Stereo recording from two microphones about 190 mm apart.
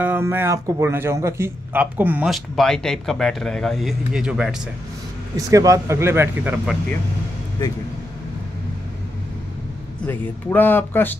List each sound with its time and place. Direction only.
0.0 s speech: 10° right (ahead or behind)
5.5 s speech: 15° right (ahead or behind)
7.6 s speech: 20° left (ahead or behind)
10.0 s speech: 10° left (ahead or behind)